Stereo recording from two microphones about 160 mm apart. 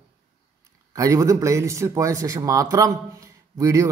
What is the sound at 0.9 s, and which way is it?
A man's voice, 20° right (ahead or behind).